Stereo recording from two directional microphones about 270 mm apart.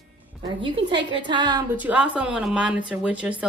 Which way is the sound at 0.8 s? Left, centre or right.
Centre.